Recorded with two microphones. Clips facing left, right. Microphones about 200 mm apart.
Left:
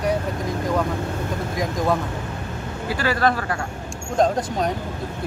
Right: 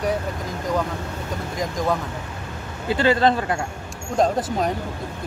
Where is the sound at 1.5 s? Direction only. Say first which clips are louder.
Left 1 dB; centre (ahead or behind).